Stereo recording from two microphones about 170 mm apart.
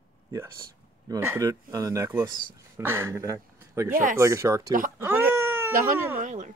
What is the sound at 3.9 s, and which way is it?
Speech, 55° right (ahead or behind).